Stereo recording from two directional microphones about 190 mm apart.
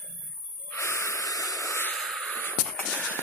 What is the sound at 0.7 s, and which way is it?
Hiss, 15° left (ahead or behind).